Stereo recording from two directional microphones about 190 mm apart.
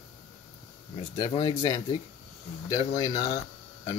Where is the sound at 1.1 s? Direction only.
25° left (ahead or behind).